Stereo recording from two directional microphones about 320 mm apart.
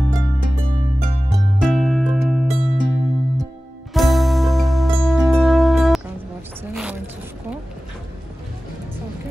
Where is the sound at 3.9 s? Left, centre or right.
Centre.